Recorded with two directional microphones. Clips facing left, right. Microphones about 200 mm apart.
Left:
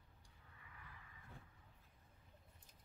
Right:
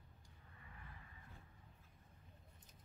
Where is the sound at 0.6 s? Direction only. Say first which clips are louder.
Right 2 dB; 35° right (ahead or behind).